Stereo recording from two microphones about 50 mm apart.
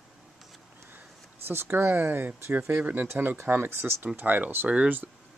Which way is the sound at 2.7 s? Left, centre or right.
Right.